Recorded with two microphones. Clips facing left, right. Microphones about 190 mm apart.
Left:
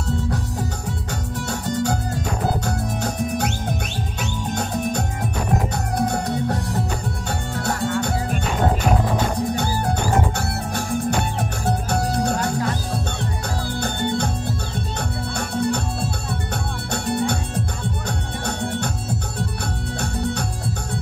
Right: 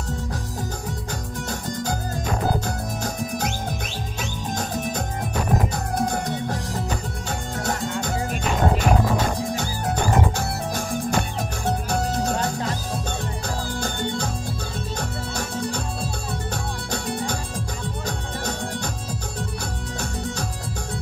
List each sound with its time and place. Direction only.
1.5 s music: 65° left (ahead or behind)
5.9 s music: 65° left (ahead or behind)
10.3 s music: 65° left (ahead or behind)
13.7 s music: 60° left (ahead or behind)
16.9 s music: 65° left (ahead or behind)